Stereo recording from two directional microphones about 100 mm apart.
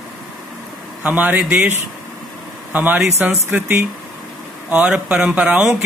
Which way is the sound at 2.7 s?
15° right (ahead or behind).